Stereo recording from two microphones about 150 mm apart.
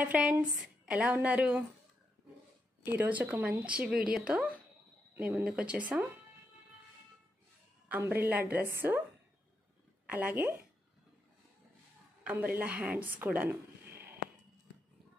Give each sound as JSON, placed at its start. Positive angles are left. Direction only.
{"t": 0.0, "sound": "a woman's voice", "side_deg": -10}
{"t": 2.8, "sound": "a woman's voice", "side_deg": -15}
{"t": 7.9, "sound": "a woman's voice", "side_deg": -15}
{"t": 10.0, "sound": "a woman's voice", "side_deg": -10}
{"t": 12.2, "sound": "a woman's voice", "side_deg": -10}
{"t": 13.8, "sound": "a sound", "side_deg": -90}